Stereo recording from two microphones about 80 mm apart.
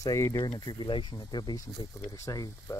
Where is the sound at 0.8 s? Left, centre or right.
Left.